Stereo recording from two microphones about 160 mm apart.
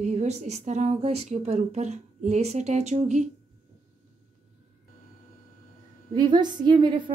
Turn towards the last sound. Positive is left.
turn(degrees=-30)  # may be behind; listen again after turning